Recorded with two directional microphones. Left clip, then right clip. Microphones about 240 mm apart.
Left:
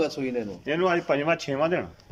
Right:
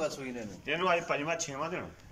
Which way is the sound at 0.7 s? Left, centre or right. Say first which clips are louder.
Left 5 dB; left.